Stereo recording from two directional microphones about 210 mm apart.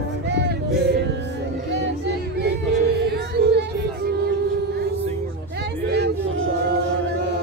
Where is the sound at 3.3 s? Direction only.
55° right (ahead or behind).